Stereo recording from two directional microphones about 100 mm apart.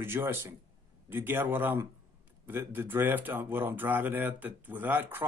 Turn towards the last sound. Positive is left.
turn(degrees=-20)  # may be behind; listen again after turning